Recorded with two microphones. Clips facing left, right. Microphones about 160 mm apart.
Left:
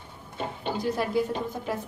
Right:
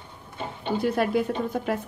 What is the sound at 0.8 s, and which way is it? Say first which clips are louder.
A woman's voice: right 3 dB; 60° right (ahead or behind).